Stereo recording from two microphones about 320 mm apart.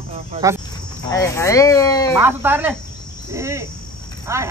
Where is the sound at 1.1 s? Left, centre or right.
Centre.